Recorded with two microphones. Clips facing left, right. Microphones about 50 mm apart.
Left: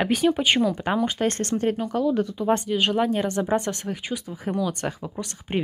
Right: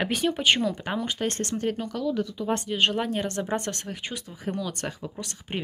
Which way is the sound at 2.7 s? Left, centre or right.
Centre.